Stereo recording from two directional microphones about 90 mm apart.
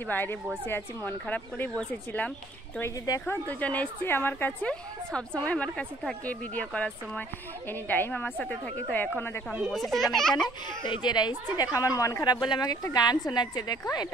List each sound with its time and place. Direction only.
0.0 s a woman's voice: 20° left (ahead or behind)
9.5 s a child's voice: centre (ahead or behind)
10.8 s a woman's voice: 55° left (ahead or behind)